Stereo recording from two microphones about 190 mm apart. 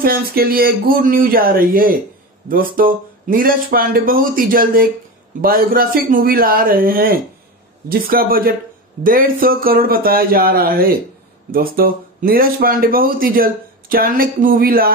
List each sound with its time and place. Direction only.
0.0 s speech: 50° right (ahead or behind)